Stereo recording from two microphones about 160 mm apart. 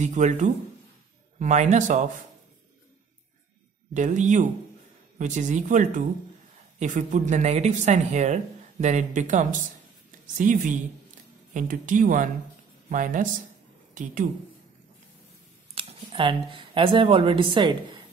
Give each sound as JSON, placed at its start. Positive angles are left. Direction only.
{"t": 0.0, "sound": "speech", "side_deg": -50}
{"t": 3.9, "sound": "speech", "side_deg": -50}
{"t": 15.7, "sound": "speech", "side_deg": -35}